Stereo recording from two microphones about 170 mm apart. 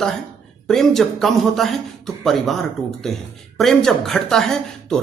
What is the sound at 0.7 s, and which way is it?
Speech, centre (ahead or behind).